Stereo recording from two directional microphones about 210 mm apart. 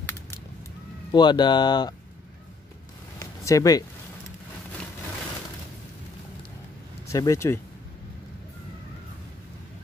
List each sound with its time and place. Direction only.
1.1 s speech: 20° left (ahead or behind)
3.2 s a sound: 15° left (ahead or behind)
7.1 s speech: 15° left (ahead or behind)